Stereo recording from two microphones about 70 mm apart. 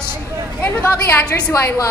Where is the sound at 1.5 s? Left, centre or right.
Left.